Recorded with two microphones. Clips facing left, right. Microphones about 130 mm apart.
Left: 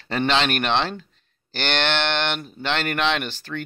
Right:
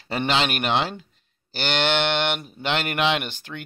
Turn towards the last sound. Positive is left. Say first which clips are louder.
# even
turn(degrees=-15)  # may be behind; listen again after turning